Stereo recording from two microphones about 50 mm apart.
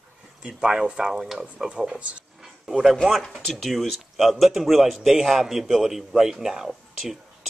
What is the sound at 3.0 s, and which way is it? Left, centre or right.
A man's voice, centre.